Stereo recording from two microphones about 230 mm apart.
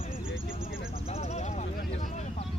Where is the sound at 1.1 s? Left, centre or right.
Left.